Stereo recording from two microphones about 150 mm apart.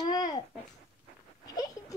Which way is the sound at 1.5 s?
25° left (ahead or behind).